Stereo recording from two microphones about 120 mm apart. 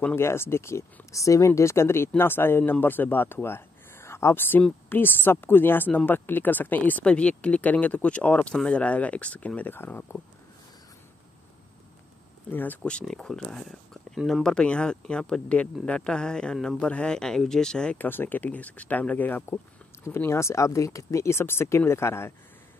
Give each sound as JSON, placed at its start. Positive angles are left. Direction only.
{"t": 0.0, "sound": "speech", "side_deg": 20}
{"t": 12.4, "sound": "speech", "side_deg": 15}